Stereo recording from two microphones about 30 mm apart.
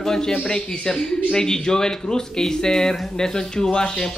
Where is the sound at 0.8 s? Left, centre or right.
Left.